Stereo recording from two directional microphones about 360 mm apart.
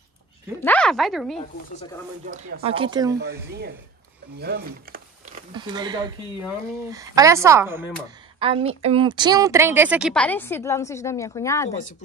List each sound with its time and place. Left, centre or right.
0.7 s a woman's voice: centre
2.2 s speech: right
3.4 s speech: right
4.4 s a sound: right
5.5 s a woman's voice: centre